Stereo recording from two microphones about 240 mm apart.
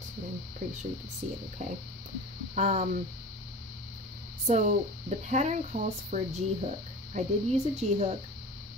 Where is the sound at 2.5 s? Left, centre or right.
Right.